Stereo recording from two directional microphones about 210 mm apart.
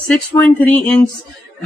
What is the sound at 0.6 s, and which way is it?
Speech, 5° left (ahead or behind).